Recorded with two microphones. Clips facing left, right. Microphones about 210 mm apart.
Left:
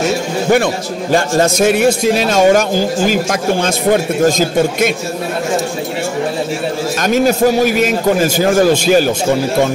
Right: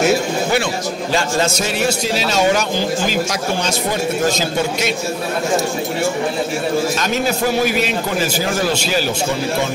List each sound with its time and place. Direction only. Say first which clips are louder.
1.1 s a man's voice: left 6 dB; 50° left (ahead or behind)
7.0 s a man's voice: left 7 dB; 45° left (ahead or behind)